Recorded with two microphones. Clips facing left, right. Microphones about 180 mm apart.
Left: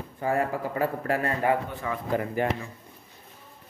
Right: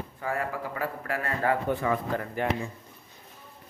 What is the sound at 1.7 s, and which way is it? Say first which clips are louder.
Speech: right 10 dB; 55° right (ahead or behind).